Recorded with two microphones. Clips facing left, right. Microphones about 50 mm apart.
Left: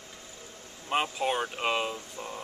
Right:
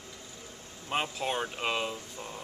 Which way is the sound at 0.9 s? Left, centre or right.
Centre.